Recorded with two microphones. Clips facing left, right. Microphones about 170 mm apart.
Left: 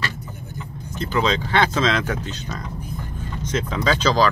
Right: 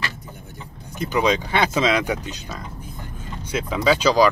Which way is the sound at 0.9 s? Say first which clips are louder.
Right 1 dB; 15° right (ahead or behind).